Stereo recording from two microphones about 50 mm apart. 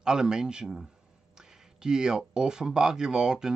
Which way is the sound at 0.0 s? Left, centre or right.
Centre.